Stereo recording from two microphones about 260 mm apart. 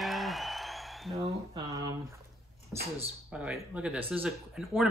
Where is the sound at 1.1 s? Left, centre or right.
Centre.